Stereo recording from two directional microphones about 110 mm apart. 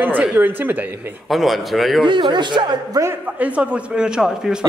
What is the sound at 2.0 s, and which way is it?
Speech, 45° right (ahead or behind).